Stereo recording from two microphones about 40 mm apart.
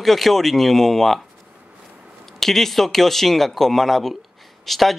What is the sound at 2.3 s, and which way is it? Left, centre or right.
Speech, centre.